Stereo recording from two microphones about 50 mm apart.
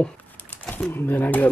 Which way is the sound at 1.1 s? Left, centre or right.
Left.